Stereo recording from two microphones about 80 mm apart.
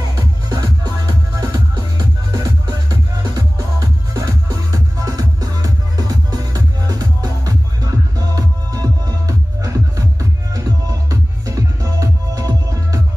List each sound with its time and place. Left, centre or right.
0.6 s music: right